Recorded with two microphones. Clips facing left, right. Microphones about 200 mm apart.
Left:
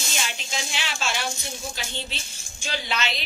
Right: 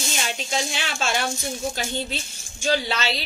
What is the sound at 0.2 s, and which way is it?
A woman's voice, 45° right (ahead or behind).